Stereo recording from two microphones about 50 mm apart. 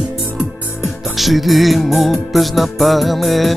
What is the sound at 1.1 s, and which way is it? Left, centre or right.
Music, centre.